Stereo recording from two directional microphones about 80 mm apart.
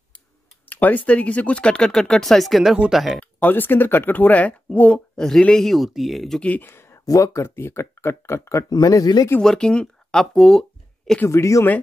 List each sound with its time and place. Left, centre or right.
0.7 s speech: left; by 3.2 s centre
3.2 s speech: left; by 6.4 s centre
6.6 s a sound: left
7.1 s speech: left
7.4 s speech: left
8.6 s speech: left
9.4 s speech: centre
11.2 s speech: left